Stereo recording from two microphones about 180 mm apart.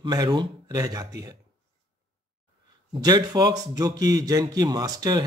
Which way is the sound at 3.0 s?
20° right (ahead or behind).